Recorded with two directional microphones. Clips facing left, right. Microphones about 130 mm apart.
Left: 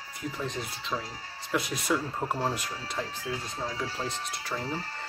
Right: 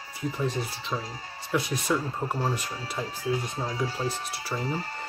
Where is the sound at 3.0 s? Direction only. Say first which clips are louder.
Right 6 dB; 15° right (ahead or behind).